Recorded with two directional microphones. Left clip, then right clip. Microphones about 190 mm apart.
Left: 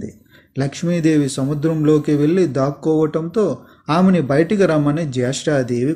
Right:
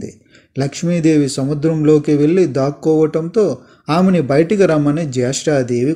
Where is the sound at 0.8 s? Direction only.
45° right (ahead or behind).